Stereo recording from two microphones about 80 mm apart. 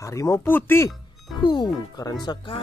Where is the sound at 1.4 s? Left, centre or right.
Left.